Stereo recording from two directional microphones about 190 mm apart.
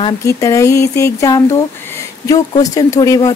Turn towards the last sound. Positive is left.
turn(degrees=20)  # may be behind; listen again after turning